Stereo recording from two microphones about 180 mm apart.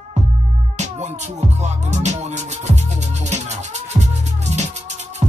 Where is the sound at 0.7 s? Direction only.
40° right (ahead or behind).